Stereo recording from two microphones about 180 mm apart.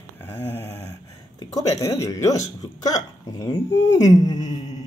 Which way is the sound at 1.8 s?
15° left (ahead or behind).